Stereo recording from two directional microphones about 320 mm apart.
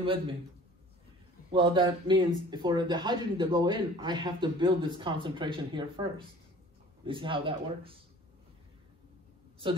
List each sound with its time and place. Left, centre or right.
1.5 s speech: centre